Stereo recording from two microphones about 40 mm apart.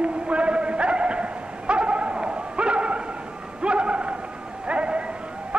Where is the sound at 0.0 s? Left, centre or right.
Right.